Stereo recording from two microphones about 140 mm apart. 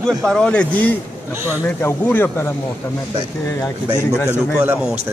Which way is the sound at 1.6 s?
15° left (ahead or behind).